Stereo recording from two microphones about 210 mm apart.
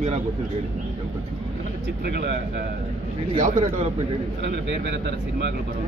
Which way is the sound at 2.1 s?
45° right (ahead or behind).